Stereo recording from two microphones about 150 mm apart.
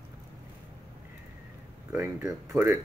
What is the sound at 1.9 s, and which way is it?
Speech, 20° right (ahead or behind).